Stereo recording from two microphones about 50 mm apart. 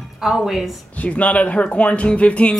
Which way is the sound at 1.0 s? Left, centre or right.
Left.